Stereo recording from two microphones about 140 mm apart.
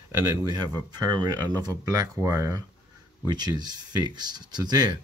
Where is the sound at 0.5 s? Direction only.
30° right (ahead or behind).